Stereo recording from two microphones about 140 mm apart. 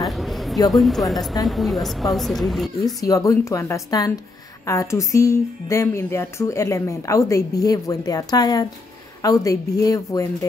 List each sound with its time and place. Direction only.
0.0 s a sound: centre (ahead or behind)
0.7 s a woman's voice: centre (ahead or behind)
2.8 s speech: 25° left (ahead or behind)